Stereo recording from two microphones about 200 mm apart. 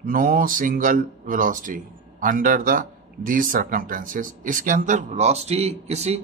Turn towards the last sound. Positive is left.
turn(degrees=-30)  # may be behind; listen again after turning